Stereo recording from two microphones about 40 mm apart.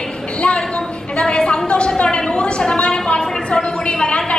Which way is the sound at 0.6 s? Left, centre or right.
Left.